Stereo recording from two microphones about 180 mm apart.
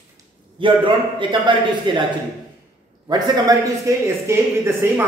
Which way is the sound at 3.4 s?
20° right (ahead or behind).